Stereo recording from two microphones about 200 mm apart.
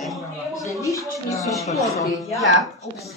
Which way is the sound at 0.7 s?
15° left (ahead or behind).